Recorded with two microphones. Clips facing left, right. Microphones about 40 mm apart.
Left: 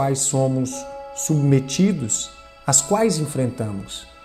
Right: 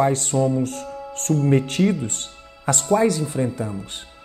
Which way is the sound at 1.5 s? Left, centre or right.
Right.